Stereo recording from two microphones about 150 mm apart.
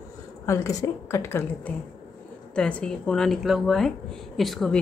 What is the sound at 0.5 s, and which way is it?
A woman's voice, 20° left (ahead or behind).